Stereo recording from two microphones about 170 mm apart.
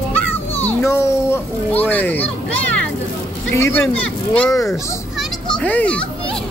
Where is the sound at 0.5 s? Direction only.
15° left (ahead or behind).